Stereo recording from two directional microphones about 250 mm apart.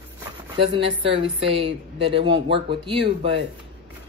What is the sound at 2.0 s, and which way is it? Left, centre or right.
Speech, right.